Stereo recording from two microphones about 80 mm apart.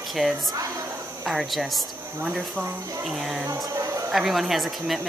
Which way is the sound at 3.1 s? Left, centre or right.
Centre.